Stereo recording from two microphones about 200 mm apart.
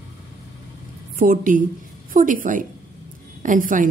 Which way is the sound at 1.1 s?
45° right (ahead or behind).